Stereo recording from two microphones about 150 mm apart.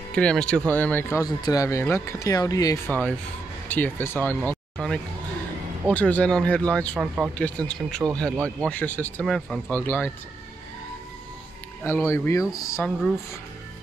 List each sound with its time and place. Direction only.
0.1 s speech: 5° left (ahead or behind); by 2.8 s 25° left (ahead or behind)
2.9 s speech: 10° left (ahead or behind)
4.7 s speech: centre (ahead or behind)
11.8 s speech: 15° left (ahead or behind)
12.8 s speech: centre (ahead or behind)